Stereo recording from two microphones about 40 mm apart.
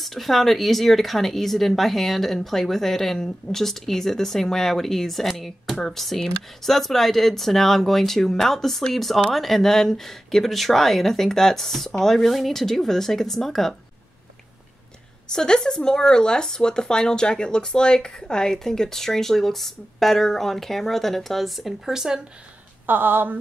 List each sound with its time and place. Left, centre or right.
0.0 s speech: centre
15.3 s speech: centre
22.8 s speech: right